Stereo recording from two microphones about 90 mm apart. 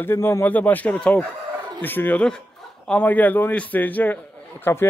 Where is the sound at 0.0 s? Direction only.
30° left (ahead or behind).